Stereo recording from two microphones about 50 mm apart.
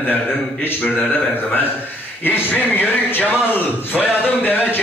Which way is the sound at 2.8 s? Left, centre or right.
Left.